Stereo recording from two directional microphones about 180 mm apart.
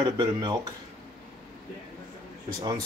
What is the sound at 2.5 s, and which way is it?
Speech, 20° right (ahead or behind).